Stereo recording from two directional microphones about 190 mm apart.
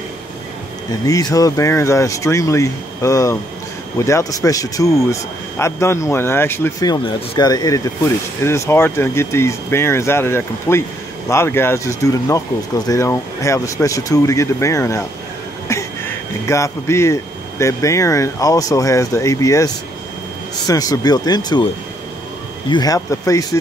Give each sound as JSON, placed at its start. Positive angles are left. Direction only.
{"t": 1.0, "sound": "speech", "side_deg": 15}
{"t": 15.7, "sound": "a sound", "side_deg": 15}
{"t": 16.4, "sound": "speech", "side_deg": 15}
{"t": 22.7, "sound": "speech", "side_deg": 20}